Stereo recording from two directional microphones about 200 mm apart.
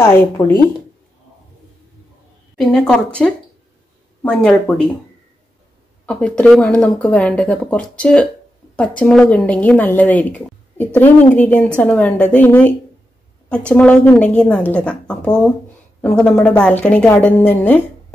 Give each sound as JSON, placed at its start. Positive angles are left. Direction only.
{"t": 0.0, "sound": "speech", "side_deg": 10}
{"t": 2.5, "sound": "a woman's voice", "side_deg": 5}
{"t": 6.0, "sound": "a woman's voice", "side_deg": 5}